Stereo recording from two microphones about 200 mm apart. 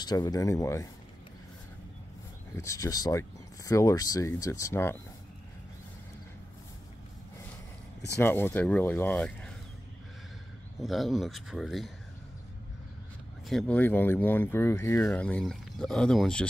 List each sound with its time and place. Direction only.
0.0 s speech: 20° left (ahead or behind)
2.5 s speech: 15° left (ahead or behind)
8.2 s speech: 10° left (ahead or behind)
10.8 s speech: centre (ahead or behind)
13.5 s speech: 5° left (ahead or behind)